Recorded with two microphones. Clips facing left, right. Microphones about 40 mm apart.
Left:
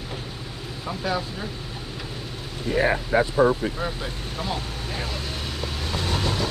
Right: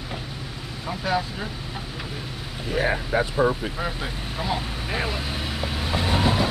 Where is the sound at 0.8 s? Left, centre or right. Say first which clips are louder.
Right 2 dB; centre.